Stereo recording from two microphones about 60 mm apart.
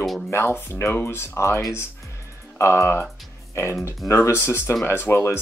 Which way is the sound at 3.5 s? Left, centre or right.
Left.